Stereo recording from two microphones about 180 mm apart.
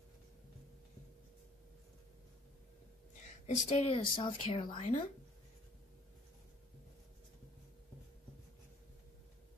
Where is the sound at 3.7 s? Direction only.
35° left (ahead or behind).